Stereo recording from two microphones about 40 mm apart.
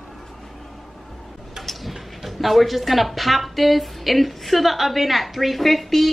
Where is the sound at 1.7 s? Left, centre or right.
Centre.